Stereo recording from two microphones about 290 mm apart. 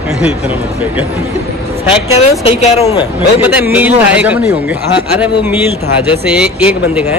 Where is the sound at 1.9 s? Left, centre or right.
Left.